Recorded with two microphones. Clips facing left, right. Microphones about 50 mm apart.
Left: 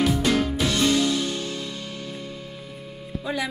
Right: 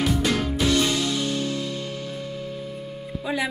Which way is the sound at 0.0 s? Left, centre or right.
Centre.